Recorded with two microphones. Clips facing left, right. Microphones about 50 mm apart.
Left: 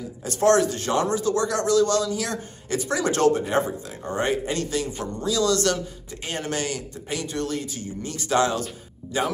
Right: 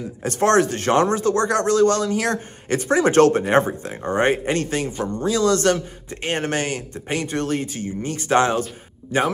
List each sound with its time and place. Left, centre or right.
0.2 s speech: right
3.2 s speech: right